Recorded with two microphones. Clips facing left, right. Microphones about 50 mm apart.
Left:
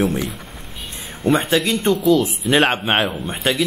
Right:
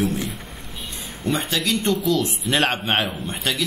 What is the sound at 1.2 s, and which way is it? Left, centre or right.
Speech, left.